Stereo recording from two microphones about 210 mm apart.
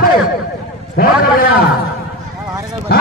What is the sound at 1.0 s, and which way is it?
Speech, 45° left (ahead or behind).